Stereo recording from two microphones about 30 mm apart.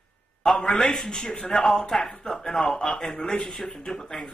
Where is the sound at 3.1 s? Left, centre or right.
Centre.